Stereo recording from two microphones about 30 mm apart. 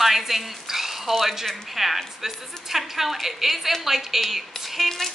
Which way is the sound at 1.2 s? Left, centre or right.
Centre.